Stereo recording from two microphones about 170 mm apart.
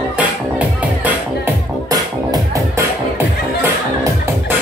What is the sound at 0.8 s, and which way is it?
Music, 10° right (ahead or behind).